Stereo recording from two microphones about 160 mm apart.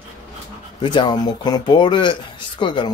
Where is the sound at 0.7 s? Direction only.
30° left (ahead or behind).